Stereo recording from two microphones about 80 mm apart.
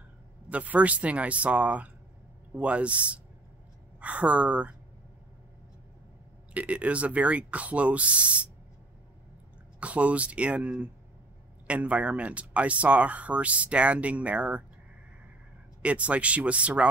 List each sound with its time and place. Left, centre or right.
0.5 s speech: centre
6.5 s speech: centre
9.8 s speech: centre
15.8 s speech: centre